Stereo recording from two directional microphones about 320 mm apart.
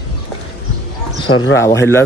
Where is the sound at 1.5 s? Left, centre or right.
Centre.